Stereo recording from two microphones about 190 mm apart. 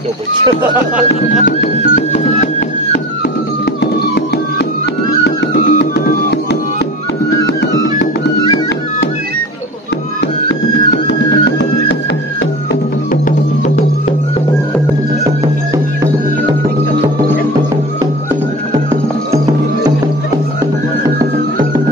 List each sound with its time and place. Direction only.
1.4 s music: 50° left (ahead or behind)
3.8 s music: 60° left (ahead or behind)
7.4 s music: 70° left (ahead or behind)
11.1 s music: 60° left (ahead or behind)